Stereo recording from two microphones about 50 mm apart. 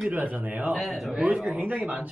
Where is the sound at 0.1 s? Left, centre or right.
Right.